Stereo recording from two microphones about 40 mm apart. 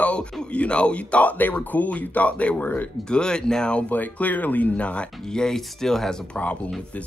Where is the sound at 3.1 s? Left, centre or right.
Left.